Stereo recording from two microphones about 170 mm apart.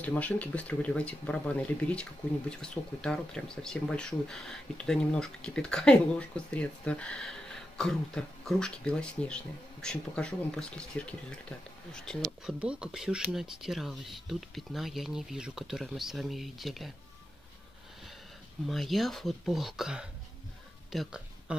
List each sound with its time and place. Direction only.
0.0 s speech: 10° left (ahead or behind)
18.7 s speech: centre (ahead or behind)